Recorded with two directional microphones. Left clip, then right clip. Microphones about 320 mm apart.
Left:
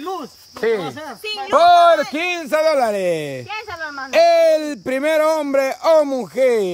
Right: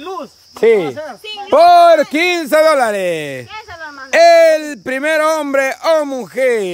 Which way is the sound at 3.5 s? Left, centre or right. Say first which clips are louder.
Left 2 dB; left.